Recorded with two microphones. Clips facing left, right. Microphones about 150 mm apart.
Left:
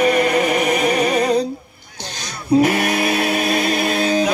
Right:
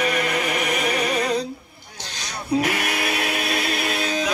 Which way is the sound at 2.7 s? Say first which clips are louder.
Left 7 dB; 35° left (ahead or behind).